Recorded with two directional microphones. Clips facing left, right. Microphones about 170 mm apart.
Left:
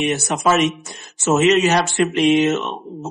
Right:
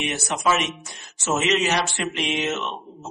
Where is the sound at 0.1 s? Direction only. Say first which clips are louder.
Left 5 dB; 45° left (ahead or behind).